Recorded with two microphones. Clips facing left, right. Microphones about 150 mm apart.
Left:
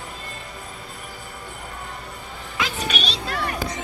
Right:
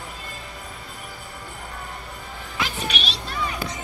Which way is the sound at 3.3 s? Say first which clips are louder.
Left 1 dB; 75° left (ahead or behind).